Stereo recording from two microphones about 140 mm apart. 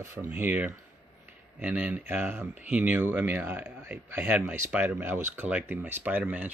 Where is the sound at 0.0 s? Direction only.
20° right (ahead or behind).